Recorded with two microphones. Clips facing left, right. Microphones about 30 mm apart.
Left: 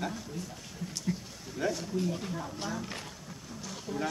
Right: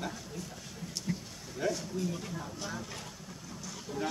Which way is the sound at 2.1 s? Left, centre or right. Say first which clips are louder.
Left 3 dB; left.